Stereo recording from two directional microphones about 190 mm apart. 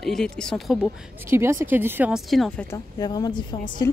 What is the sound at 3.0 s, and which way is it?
A woman's voice, 20° left (ahead or behind).